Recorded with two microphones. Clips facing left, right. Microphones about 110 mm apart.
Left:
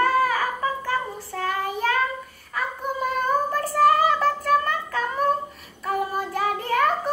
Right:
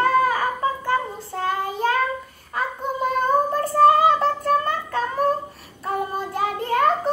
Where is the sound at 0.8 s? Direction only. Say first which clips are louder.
Right 3 dB; 20° right (ahead or behind).